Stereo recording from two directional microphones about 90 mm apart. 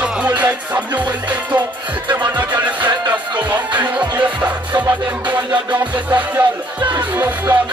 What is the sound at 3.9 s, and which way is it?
Music, 15° right (ahead or behind).